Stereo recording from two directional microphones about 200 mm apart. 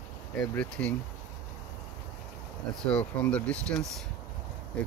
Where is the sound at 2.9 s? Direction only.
5° left (ahead or behind).